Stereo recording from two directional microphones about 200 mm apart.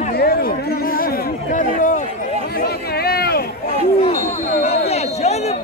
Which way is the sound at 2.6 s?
50° left (ahead or behind).